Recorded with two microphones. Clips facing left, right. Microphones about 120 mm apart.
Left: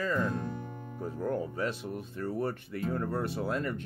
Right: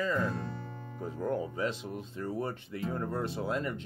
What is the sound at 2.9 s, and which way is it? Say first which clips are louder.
Speech: left 2 dB; 15° right (ahead or behind).